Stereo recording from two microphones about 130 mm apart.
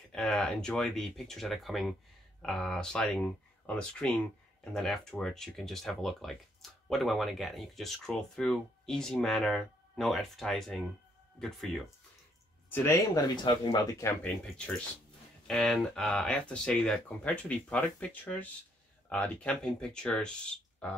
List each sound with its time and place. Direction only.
0.1 s speech: 5° left (ahead or behind)
12.6 s a sound: 15° left (ahead or behind)
13.1 s speech: 35° left (ahead or behind)
14.0 s speech: 10° left (ahead or behind)